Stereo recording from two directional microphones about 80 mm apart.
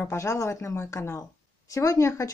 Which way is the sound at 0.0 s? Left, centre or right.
Left.